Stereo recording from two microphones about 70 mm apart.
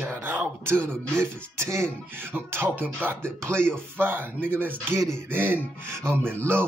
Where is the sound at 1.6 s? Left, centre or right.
Right.